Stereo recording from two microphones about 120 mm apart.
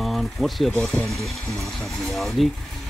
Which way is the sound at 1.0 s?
Centre (ahead or behind).